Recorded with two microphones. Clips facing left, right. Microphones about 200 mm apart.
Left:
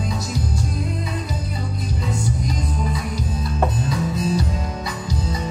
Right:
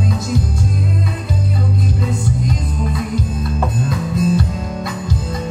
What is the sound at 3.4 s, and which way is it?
Music, 55° right (ahead or behind).